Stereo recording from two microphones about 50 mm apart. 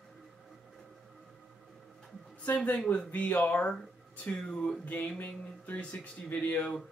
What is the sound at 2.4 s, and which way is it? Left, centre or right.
Speech, left.